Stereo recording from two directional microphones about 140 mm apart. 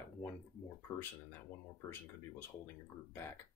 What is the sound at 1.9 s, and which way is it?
Speech, 15° left (ahead or behind).